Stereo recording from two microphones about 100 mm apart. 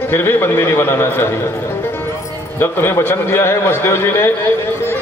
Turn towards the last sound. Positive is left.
turn(degrees=25)  # may be behind; listen again after turning